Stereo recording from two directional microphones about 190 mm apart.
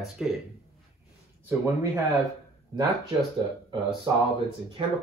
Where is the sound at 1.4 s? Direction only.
10° right (ahead or behind).